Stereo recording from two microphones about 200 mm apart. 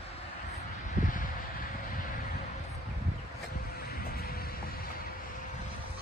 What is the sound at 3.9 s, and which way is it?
Vehicle, 50° left (ahead or behind).